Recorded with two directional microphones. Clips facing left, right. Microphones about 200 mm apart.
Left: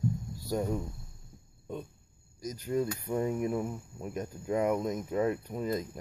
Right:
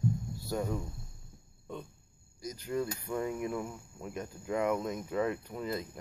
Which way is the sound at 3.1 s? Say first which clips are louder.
Left 4 dB; 30° left (ahead or behind).